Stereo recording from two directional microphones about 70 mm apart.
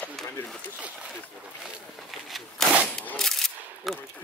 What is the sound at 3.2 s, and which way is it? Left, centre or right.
Single-lens reflex camera, centre.